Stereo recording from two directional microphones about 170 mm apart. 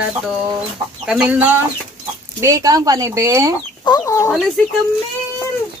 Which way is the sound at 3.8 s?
20° left (ahead or behind).